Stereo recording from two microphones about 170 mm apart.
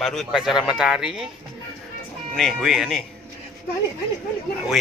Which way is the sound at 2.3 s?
Centre (ahead or behind).